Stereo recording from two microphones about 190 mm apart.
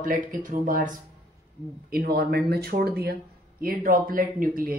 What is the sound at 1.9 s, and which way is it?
Speech, 55° right (ahead or behind).